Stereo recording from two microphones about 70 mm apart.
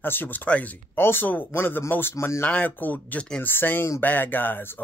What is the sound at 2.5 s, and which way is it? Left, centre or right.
Speech, left.